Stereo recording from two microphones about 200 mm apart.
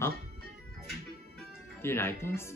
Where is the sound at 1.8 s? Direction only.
10° left (ahead or behind).